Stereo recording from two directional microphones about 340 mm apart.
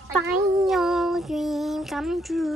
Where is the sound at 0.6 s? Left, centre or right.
Centre.